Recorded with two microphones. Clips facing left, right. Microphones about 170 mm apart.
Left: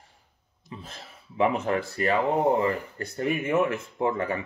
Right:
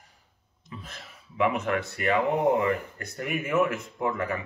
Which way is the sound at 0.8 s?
30° left (ahead or behind).